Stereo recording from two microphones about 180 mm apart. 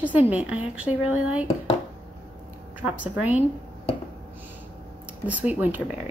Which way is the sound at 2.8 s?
10° right (ahead or behind).